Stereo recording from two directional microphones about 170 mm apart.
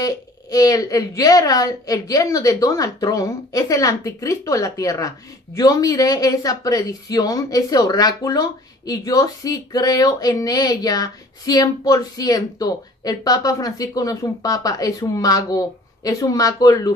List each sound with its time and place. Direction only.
0.0 s a woman's voice: 20° left (ahead or behind)